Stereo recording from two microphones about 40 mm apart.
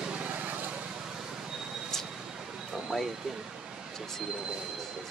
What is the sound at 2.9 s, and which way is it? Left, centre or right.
Speech, centre.